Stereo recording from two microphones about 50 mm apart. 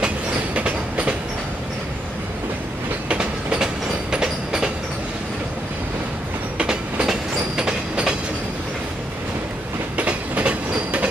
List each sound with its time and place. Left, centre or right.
0.6 s train: right
3.1 s train: right
6.6 s train: centre
9.9 s train: right